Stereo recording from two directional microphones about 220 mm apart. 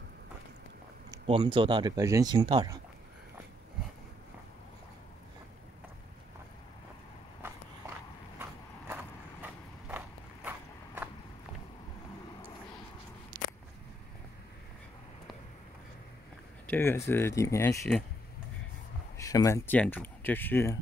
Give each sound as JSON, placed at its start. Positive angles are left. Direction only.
{"t": 1.1, "sound": "speech", "side_deg": -20}
{"t": 8.4, "sound": "vehicle", "side_deg": -10}
{"t": 16.6, "sound": "speech", "side_deg": 10}
{"t": 19.1, "sound": "speech", "side_deg": 15}